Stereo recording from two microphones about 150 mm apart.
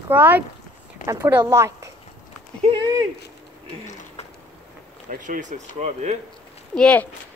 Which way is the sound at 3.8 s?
50° left (ahead or behind).